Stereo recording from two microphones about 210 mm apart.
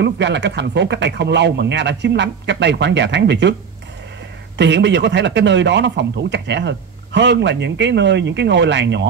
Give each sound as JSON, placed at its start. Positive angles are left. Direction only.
{"t": 0.0, "sound": "speech", "side_deg": -55}
{"t": 4.6, "sound": "speech", "side_deg": -55}